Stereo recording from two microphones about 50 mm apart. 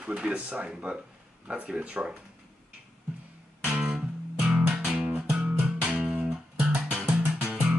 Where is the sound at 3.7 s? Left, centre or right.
Centre.